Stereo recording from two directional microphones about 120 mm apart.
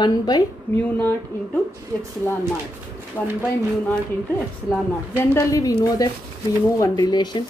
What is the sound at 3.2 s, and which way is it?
Speech, 20° left (ahead or behind).